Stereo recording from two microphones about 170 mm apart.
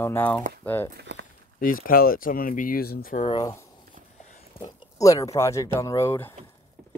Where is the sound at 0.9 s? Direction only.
90° right.